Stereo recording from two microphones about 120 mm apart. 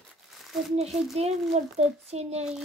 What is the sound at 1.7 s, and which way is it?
Speech, 65° right (ahead or behind).